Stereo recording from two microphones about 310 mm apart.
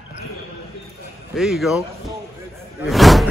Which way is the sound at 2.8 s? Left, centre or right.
Centre.